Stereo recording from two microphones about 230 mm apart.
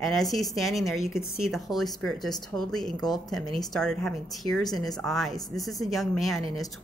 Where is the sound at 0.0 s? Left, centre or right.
Centre.